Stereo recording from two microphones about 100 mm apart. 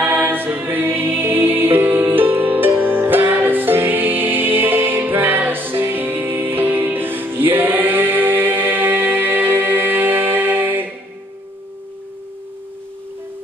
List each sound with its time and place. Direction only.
0.0 s music: 20° right (ahead or behind)